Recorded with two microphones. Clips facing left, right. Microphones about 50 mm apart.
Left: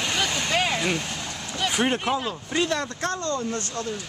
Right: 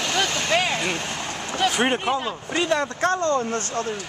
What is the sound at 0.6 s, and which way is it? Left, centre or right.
Vehicle, centre.